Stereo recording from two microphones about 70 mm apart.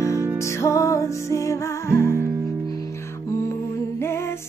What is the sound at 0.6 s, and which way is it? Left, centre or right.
Music, left.